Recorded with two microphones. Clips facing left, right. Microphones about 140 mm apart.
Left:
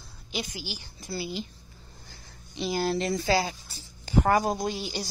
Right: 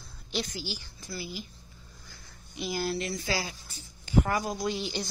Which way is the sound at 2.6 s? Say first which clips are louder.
Left 4 dB; 25° left (ahead or behind).